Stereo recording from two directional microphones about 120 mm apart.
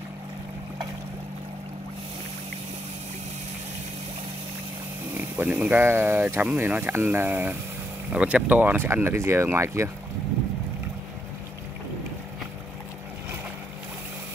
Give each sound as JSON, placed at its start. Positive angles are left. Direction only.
{"t": 5.1, "sound": "speech", "side_deg": -15}